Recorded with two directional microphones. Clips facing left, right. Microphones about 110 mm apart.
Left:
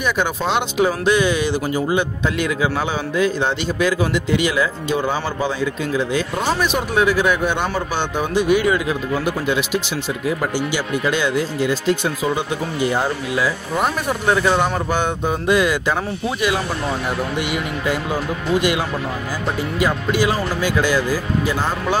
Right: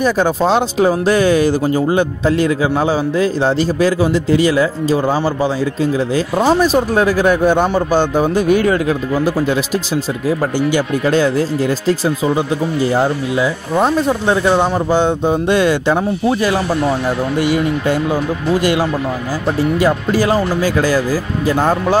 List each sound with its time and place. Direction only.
0.0 s speech: 35° right (ahead or behind)
10.7 s speech: 40° right (ahead or behind)
12.9 s speech: 30° right (ahead or behind)